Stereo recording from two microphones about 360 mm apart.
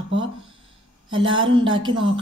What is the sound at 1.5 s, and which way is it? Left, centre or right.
Speech, centre.